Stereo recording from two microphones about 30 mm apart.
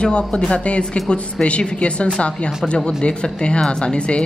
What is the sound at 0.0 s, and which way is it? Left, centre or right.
Speech, left.